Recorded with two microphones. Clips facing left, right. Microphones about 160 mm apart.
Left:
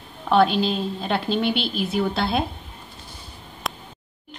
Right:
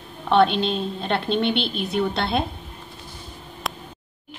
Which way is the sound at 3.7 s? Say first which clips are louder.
Even; centre (ahead or behind).